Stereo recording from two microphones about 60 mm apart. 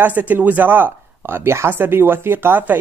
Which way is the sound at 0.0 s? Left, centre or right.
Right.